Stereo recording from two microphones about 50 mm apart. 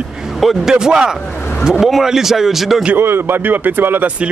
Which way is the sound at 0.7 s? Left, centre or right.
Centre.